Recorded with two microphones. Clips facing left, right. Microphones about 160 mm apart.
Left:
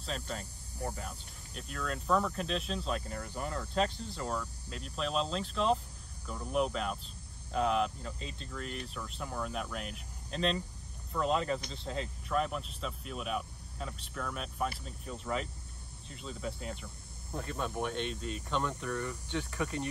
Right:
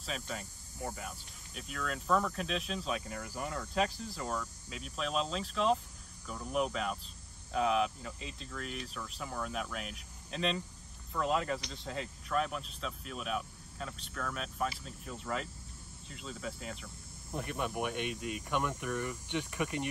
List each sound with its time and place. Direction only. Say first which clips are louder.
0.0 s cricket: left 1 dB; centre (ahead or behind)
17.3 s speech: even; 15° right (ahead or behind)